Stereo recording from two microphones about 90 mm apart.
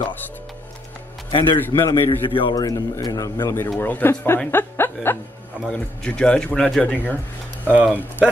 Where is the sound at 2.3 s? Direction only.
70° left (ahead or behind).